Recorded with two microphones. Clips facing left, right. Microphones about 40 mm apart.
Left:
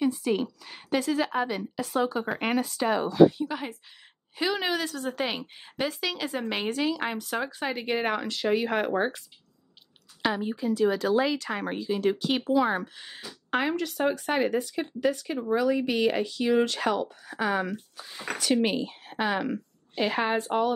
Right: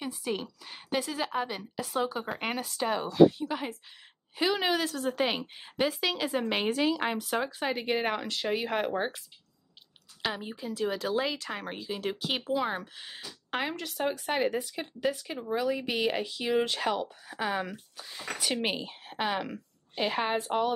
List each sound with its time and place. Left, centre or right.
0.0 s a woman's voice: centre
10.2 s a woman's voice: centre
17.9 s speech: centre
18.6 s a woman's voice: centre